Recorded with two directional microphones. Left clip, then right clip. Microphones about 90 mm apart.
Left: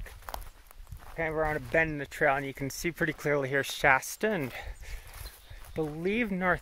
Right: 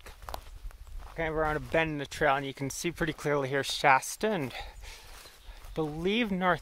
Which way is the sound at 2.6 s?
Centre (ahead or behind).